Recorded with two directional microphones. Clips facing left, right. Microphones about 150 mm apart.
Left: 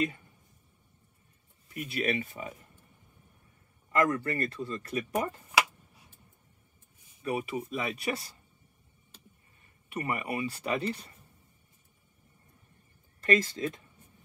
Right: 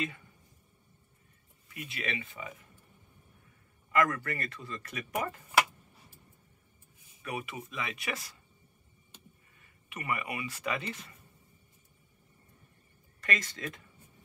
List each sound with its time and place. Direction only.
1.7 s speech: 40° left (ahead or behind)
4.0 s speech: 30° left (ahead or behind)
7.2 s speech: 30° left (ahead or behind)
9.8 s speech: 35° left (ahead or behind)
13.2 s speech: 30° left (ahead or behind)